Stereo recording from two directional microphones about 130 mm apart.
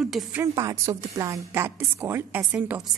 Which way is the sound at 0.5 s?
25° right (ahead or behind).